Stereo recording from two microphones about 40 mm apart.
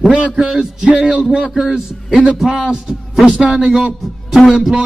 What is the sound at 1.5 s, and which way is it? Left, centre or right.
Speech, centre.